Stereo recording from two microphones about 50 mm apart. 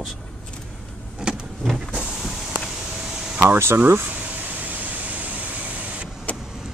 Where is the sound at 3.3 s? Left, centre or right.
Right.